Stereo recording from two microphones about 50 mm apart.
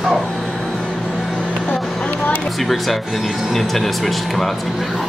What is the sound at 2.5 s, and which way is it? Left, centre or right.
Speech, centre.